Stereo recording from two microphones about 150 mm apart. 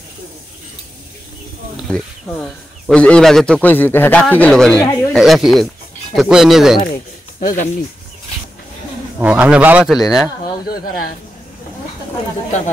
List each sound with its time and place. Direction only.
1.9 s speech: 5° left (ahead or behind)
7.4 s speech: 60° left (ahead or behind)
9.2 s a man's voice: 5° right (ahead or behind)
10.7 s speech: 75° left (ahead or behind)